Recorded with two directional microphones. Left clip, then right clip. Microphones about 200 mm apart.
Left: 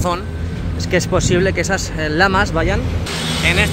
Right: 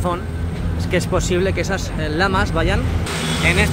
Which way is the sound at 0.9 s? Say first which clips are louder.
Left 3 dB; 15° left (ahead or behind).